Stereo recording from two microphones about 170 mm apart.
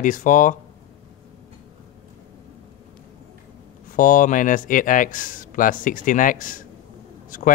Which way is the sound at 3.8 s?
50° left (ahead or behind).